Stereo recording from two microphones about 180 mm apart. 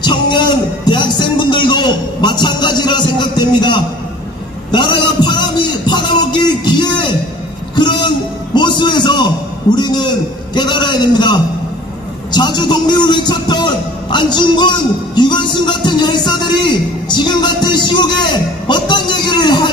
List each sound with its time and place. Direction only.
0.0 s music: 25° left (ahead or behind)
4.6 s a sound: 25° left (ahead or behind)
9.8 s a man's voice: 25° left (ahead or behind)